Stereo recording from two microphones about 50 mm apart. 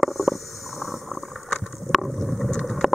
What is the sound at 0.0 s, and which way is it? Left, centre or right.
Stomach rumble, centre.